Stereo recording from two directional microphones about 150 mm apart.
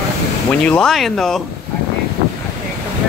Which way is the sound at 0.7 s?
5° left (ahead or behind).